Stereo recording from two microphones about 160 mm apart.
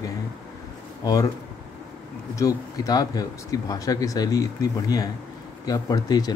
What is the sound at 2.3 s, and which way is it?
Speech, 20° left (ahead or behind).